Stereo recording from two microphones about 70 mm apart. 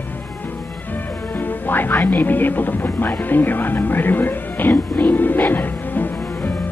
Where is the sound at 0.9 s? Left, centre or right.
Left.